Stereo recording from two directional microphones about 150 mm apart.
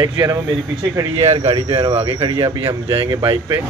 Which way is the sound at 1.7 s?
30° right (ahead or behind).